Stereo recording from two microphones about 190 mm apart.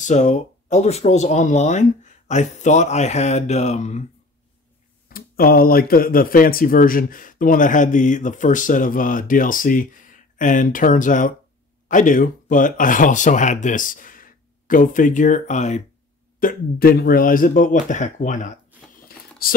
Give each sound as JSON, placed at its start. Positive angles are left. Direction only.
{"t": 0.0, "sound": "speech", "side_deg": 40}
{"t": 5.1, "sound": "speech", "side_deg": 50}